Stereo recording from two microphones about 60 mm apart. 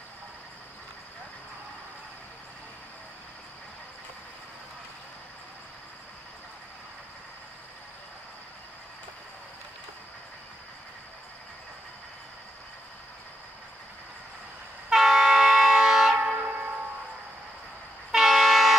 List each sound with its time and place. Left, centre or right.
14.9 s train: centre
16.2 s train: right
18.1 s train: centre